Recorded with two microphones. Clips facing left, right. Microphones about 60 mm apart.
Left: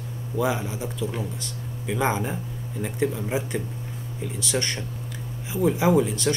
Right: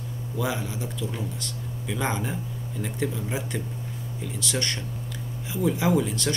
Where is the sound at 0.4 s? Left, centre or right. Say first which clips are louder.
Left 4 dB; centre.